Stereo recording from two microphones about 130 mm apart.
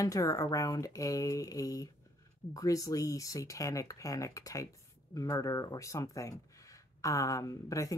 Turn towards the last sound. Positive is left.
turn(degrees=25)  # may be behind; listen again after turning